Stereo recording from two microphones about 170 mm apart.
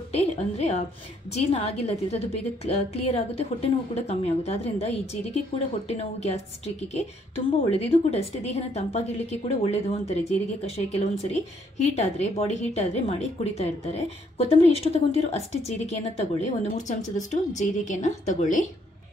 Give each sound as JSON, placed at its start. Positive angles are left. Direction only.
{"t": 0.1, "sound": "a woman's voice", "side_deg": 40}